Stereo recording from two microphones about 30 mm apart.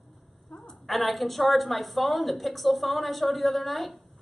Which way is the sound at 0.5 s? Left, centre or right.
Left.